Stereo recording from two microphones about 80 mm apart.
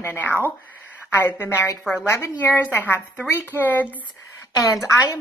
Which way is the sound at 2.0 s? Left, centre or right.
Left.